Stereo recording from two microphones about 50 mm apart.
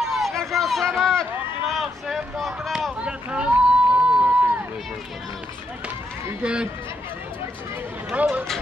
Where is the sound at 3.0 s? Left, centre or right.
Right.